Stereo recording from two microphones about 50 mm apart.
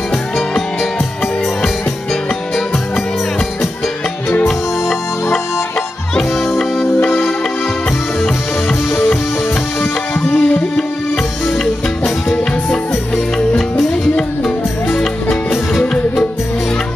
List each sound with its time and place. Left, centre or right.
4.5 s music: centre
10.2 s music: left